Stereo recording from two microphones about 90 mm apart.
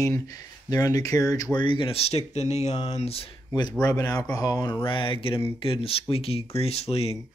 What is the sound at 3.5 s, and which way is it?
Speech, 50° left (ahead or behind).